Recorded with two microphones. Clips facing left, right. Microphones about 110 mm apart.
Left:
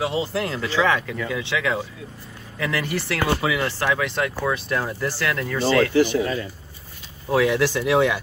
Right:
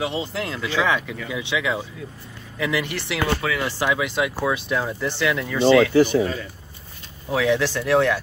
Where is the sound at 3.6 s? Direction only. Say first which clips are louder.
Even; 15° right (ahead or behind).